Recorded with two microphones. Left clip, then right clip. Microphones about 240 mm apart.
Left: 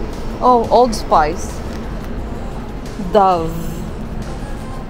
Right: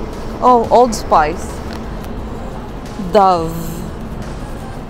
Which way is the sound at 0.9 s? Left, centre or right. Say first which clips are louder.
Right 1 dB; centre.